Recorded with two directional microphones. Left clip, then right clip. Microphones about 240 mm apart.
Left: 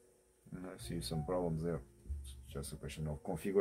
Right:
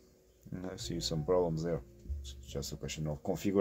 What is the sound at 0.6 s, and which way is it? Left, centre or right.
Speech, right.